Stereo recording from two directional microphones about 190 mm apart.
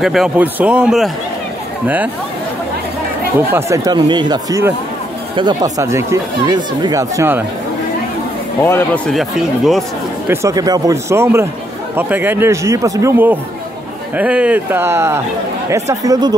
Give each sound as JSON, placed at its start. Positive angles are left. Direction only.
{"t": 0.0, "sound": "speech", "side_deg": 0}
{"t": 3.3, "sound": "speech", "side_deg": -15}
{"t": 8.6, "sound": "speech", "side_deg": 10}
{"t": 10.2, "sound": "speech", "side_deg": -15}